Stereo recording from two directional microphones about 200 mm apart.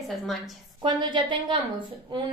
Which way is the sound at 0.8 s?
25° right (ahead or behind).